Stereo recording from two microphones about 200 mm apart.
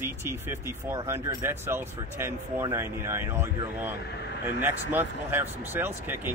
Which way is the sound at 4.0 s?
55° left (ahead or behind).